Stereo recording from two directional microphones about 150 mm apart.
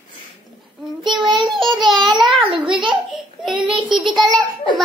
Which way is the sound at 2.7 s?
35° right (ahead or behind).